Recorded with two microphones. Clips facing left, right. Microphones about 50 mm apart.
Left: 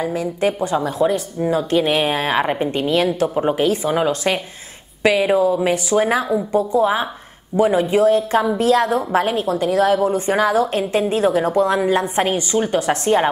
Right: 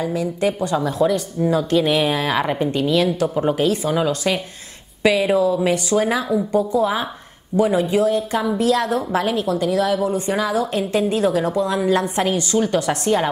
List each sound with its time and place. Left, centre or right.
0.0 s speech: left
3.3 s a woman's voice: left
11.8 s a woman's voice: left